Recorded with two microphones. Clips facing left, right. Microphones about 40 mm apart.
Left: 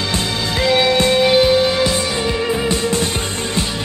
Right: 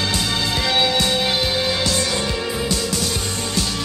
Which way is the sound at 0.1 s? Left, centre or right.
Left.